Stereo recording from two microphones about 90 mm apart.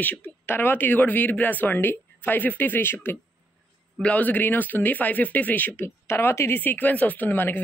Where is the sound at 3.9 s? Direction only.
15° left (ahead or behind).